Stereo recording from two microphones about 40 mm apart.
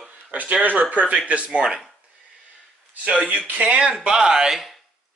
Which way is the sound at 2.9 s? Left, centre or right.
Right.